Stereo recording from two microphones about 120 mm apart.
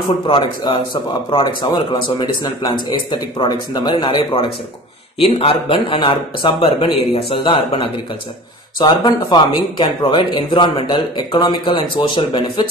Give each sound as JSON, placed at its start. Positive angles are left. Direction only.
{"t": 0.3, "sound": "speech", "side_deg": 45}